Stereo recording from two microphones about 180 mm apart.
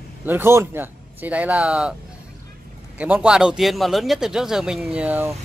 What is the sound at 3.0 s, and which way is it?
A man's voice, 5° right (ahead or behind).